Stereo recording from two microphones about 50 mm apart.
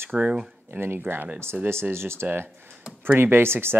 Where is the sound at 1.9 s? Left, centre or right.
Right.